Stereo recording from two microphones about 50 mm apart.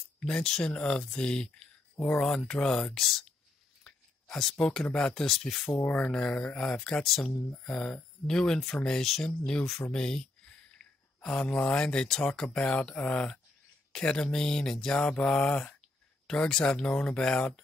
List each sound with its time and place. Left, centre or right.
0.4 s speech: centre
3.8 s a sound: centre
4.8 s speech: centre
5.9 s speech: centre
10.8 s a sound: centre
11.2 s speech: centre
12.5 s speech: left
13.9 s speech: centre